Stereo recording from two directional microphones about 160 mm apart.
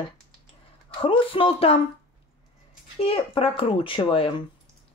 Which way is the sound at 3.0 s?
35° left (ahead or behind).